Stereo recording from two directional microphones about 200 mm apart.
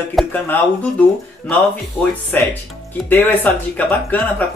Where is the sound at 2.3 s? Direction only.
10° left (ahead or behind).